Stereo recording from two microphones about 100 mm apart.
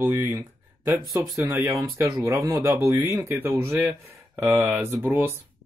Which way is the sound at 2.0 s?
30° right (ahead or behind).